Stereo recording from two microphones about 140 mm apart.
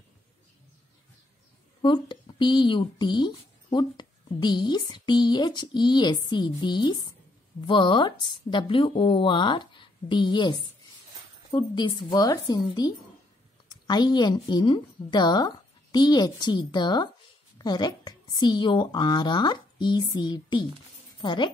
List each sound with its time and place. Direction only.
1.8 s speech: 35° left (ahead or behind)
11.5 s a woman's voice: 35° left (ahead or behind)